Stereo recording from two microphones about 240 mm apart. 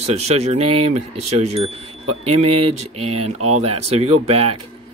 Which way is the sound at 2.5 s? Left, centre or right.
Right.